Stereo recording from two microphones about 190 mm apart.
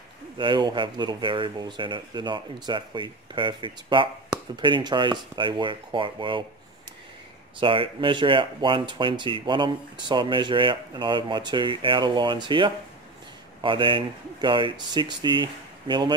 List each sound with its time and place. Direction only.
0.4 s speech: 25° right (ahead or behind)
7.6 s speech: 25° right (ahead or behind)